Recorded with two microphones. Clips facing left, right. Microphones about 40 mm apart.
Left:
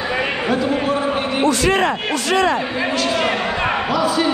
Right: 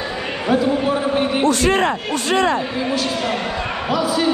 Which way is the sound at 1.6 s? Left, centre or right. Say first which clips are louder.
Even; left.